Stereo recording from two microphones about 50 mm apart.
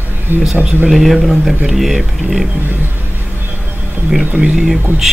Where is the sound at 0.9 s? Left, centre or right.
Centre.